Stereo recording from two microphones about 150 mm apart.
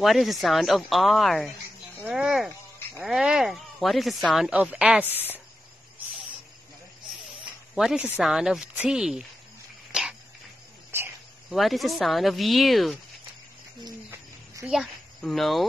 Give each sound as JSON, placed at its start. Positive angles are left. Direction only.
{"t": 0.0, "sound": "speech", "side_deg": 0}
{"t": 7.7, "sound": "speech", "side_deg": -5}
{"t": 9.9, "sound": "dog", "side_deg": -5}
{"t": 11.5, "sound": "speech", "side_deg": 0}
{"t": 14.1, "sound": "a sound", "side_deg": -20}
{"t": 14.7, "sound": "speech", "side_deg": 0}